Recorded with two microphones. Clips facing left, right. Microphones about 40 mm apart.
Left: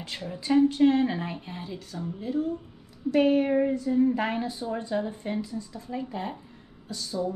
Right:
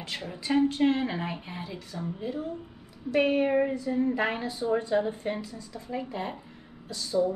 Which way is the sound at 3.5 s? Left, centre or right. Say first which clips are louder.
Left 2 dB; right.